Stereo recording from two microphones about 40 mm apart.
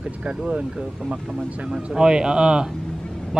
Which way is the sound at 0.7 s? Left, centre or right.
Right.